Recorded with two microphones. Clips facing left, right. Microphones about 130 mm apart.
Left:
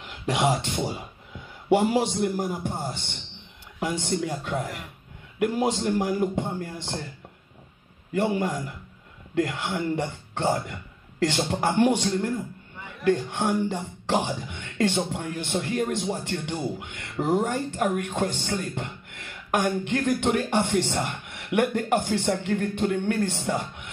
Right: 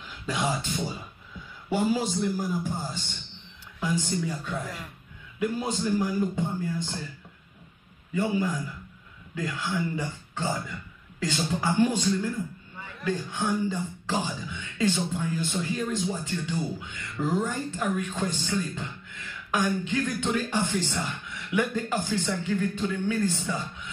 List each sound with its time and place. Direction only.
0.0 s a man's voice: 70° left (ahead or behind)
8.1 s a man's voice: 65° left (ahead or behind)